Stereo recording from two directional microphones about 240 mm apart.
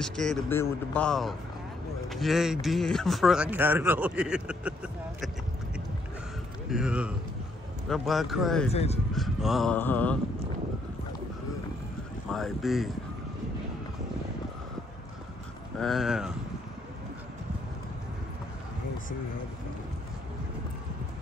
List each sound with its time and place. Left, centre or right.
0.0 s a man's voice: centre
6.7 s a man's voice: centre
8.6 s speech: left
9.1 s a man's voice: centre
12.3 s a man's voice: centre
15.8 s a man's voice: centre